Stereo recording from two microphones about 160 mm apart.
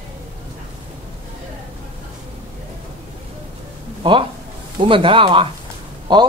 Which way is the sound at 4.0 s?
30° right (ahead or behind).